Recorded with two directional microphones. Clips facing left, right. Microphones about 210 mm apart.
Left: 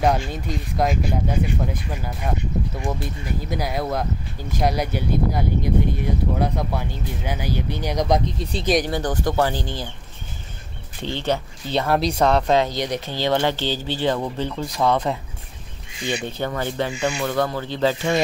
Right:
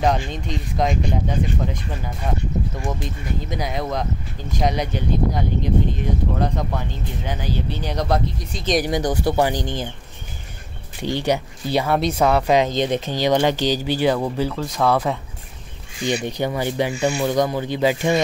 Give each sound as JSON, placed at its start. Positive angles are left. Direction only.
{"t": 0.0, "sound": "speech", "side_deg": 5}
{"t": 8.4, "sound": "speech", "side_deg": 30}
{"t": 8.8, "sound": "speech", "side_deg": -15}
{"t": 11.0, "sound": "speech", "side_deg": -10}
{"t": 14.5, "sound": "speech", "side_deg": 5}
{"t": 14.9, "sound": "speech", "side_deg": -5}